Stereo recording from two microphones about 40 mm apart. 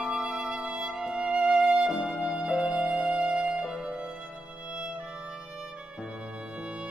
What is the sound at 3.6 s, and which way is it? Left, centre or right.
Music, centre.